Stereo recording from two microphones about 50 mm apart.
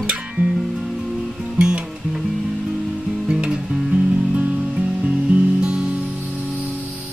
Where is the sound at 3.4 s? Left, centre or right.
Right.